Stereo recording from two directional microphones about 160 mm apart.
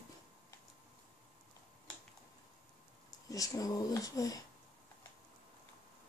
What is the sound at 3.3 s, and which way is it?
Speech, 20° left (ahead or behind).